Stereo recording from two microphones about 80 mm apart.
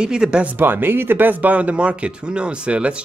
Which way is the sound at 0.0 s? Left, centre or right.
Centre.